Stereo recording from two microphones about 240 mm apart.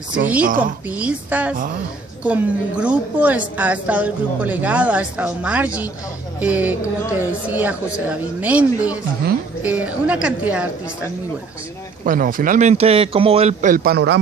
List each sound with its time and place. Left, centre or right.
0.8 s a woman's voice: centre
12.0 s a man's voice: right